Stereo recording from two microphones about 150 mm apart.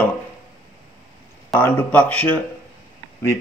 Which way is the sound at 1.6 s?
10° left (ahead or behind).